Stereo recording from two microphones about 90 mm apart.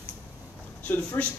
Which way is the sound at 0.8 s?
15° left (ahead or behind).